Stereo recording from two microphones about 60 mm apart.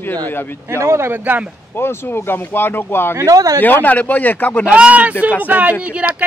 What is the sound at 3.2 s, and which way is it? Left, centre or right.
Speech, right.